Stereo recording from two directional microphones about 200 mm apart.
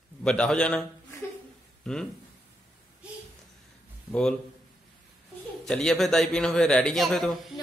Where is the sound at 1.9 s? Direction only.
5° left (ahead or behind).